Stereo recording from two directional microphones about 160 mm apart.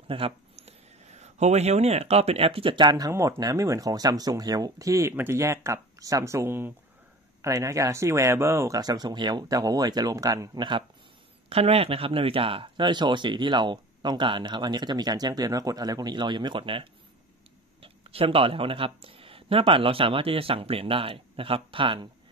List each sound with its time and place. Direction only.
0.1 s speech: 40° right (ahead or behind)
11.4 s speech: 40° right (ahead or behind)